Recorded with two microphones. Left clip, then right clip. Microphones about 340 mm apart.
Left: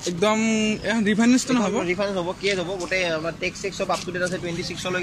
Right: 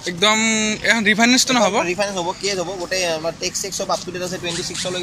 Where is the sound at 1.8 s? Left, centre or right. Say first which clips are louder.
Right 3 dB; right.